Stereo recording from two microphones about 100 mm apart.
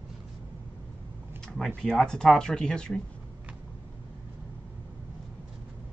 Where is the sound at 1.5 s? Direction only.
10° left (ahead or behind).